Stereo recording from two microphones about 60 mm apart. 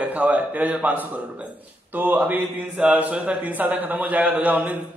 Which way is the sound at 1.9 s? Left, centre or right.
Right.